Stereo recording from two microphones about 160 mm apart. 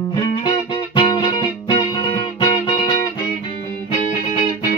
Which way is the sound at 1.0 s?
25° left (ahead or behind).